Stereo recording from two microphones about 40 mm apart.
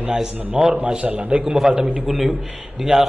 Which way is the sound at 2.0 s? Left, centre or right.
Centre.